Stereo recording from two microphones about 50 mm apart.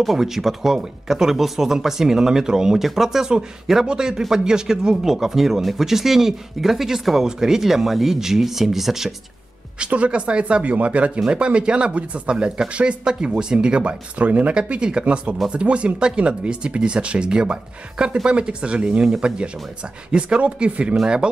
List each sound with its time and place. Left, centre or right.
0.0 s speech: centre
9.8 s speech: right